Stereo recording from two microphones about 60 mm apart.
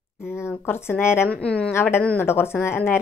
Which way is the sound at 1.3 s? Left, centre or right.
Centre.